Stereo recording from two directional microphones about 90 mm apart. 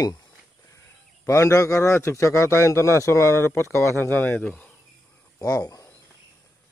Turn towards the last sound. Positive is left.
turn(degrees=40)  # may be behind; listen again after turning